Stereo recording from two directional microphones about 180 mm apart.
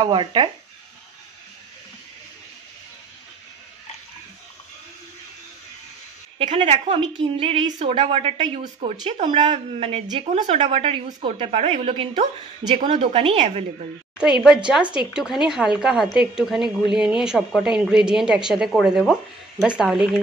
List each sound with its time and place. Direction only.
0.0 s speech: 25° right (ahead or behind)
6.3 s a woman's voice: 35° right (ahead or behind)
9.2 s a woman's voice: 30° right (ahead or behind)
15.1 s a woman's voice: 5° right (ahead or behind)